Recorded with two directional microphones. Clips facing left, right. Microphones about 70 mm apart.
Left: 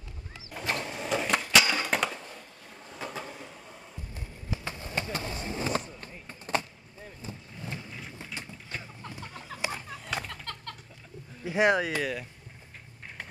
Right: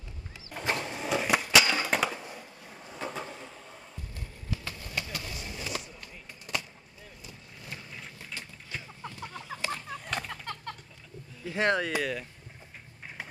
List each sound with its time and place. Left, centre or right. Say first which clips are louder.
0.5 s printer: right 1 dB; centre
0.8 s skateboard: right 1 dB; centre
4.1 s a sound: left 1 dB; left
7.2 s vehicle: left 8 dB; left
8.4 s chicken: left 3 dB; left
9.0 s chicken: right 1 dB; centre
9.6 s a sound: left 1 dB; centre
9.8 s a sound: even; centre
11.4 s speech: left 3 dB; centre